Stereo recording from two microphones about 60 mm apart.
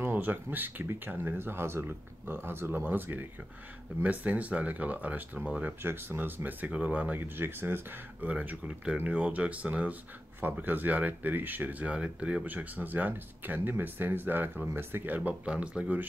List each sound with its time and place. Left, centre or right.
0.0 s speech: right
5.8 s speech: right
8.3 s speech: right
11.8 s speech: centre
12.4 s speech: right
15.1 s speech: right